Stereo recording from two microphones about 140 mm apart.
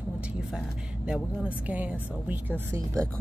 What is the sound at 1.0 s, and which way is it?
Speech, 10° right (ahead or behind).